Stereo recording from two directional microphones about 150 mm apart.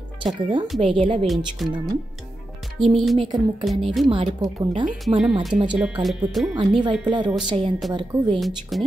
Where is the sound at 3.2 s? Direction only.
30° right (ahead or behind).